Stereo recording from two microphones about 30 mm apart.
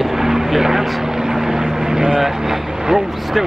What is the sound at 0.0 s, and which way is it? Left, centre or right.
Vehicle, centre.